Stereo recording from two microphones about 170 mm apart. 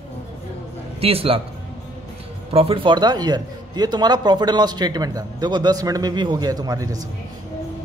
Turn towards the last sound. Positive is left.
turn(degrees=-20)  # may be behind; listen again after turning